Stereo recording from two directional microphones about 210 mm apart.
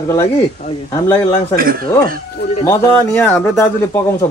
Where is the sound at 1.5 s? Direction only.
45° right (ahead or behind).